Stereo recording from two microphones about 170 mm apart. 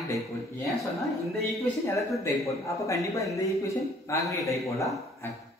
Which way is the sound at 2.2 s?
20° left (ahead or behind).